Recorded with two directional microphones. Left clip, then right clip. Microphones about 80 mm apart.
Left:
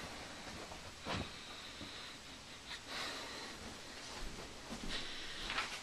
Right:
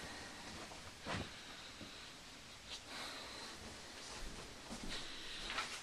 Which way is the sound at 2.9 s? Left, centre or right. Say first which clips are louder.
Left 6 dB; left.